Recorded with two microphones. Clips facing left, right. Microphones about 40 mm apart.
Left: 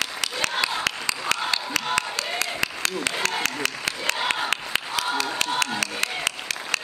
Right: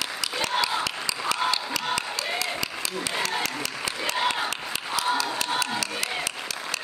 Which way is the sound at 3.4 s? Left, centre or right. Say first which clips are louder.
Left 3 dB; left.